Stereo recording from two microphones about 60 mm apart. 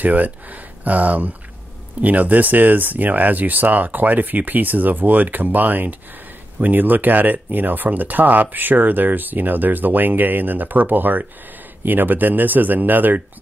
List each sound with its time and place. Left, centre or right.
0.0 s speech: right